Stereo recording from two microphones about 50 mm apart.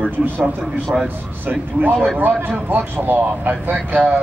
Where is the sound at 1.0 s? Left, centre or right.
Right.